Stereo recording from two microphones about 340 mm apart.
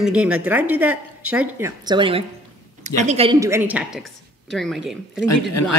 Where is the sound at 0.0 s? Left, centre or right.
Centre.